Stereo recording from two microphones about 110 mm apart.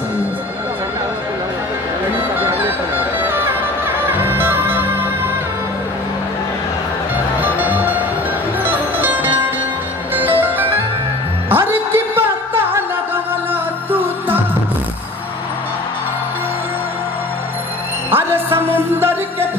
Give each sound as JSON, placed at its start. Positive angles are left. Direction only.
{"t": 3.2, "sound": "music", "side_deg": -20}
{"t": 7.3, "sound": "music", "side_deg": -15}
{"t": 18.1, "sound": "music", "side_deg": -20}